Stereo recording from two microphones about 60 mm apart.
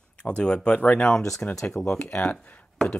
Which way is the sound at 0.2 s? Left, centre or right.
Centre.